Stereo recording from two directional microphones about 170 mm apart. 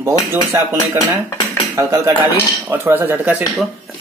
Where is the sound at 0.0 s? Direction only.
15° right (ahead or behind).